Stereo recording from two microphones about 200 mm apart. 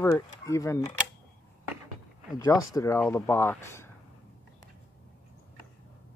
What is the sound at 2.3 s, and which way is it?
Speech, 20° left (ahead or behind).